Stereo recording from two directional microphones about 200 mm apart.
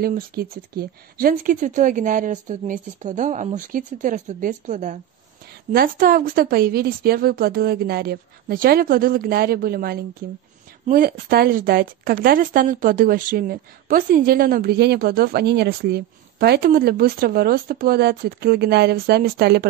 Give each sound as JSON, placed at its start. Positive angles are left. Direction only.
{"t": 0.0, "sound": "speech", "side_deg": -50}